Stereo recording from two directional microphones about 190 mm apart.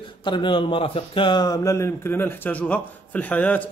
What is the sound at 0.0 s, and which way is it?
Speech, 25° left (ahead or behind).